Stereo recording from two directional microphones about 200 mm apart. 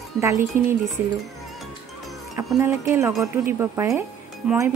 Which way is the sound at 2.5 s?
10° right (ahead or behind).